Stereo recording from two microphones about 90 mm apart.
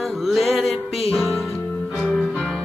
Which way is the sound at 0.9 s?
90° left.